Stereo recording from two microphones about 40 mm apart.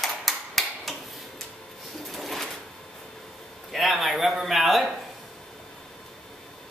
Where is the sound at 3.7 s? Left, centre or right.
Centre.